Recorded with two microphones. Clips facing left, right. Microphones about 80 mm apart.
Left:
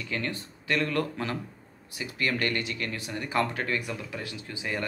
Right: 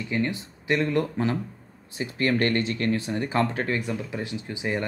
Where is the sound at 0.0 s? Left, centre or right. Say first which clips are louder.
Right 6 dB; right.